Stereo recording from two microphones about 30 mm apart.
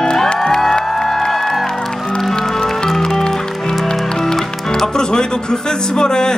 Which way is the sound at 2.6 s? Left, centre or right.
Centre.